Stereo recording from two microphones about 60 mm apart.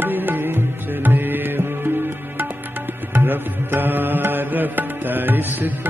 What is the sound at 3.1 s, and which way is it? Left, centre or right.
Music, right.